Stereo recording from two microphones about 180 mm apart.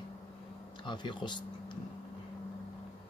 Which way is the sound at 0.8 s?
25° left (ahead or behind).